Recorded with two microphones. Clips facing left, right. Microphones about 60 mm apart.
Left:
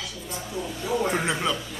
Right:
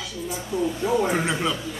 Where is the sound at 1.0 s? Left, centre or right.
Centre.